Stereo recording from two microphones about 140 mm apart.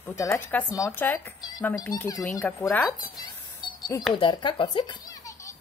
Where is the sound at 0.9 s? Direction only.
15° left (ahead or behind).